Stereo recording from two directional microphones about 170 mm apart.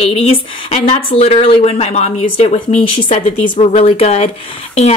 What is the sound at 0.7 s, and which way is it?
Speech, 40° left (ahead or behind).